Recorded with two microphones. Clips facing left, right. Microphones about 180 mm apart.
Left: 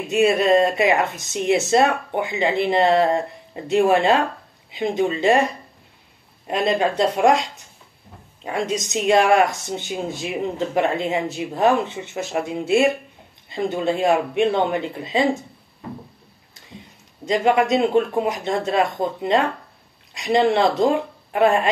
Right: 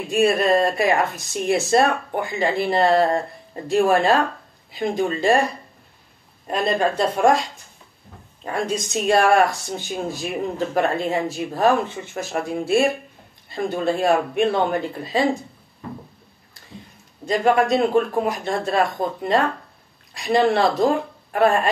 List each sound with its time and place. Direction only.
0.1 s speech: 20° left (ahead or behind)
8.5 s speech: 20° left (ahead or behind)
17.3 s speech: 20° left (ahead or behind)